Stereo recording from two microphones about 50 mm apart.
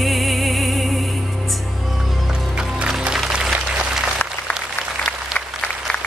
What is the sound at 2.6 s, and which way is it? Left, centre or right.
Music, centre.